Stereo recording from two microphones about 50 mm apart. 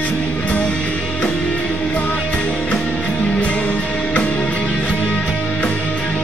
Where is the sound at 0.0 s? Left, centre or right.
Left.